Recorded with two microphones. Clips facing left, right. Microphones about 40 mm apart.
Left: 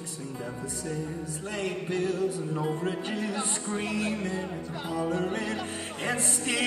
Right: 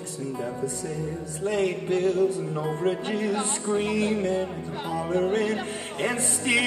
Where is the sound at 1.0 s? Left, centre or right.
Right.